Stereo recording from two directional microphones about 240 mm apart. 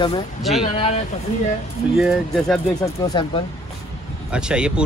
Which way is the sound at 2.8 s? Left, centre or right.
Centre.